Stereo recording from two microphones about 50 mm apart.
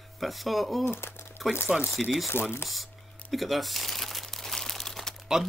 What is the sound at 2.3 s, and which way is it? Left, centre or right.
Speech, left.